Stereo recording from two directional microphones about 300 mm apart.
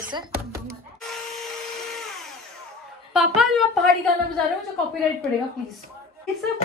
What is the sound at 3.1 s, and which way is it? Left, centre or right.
A woman's voice, centre.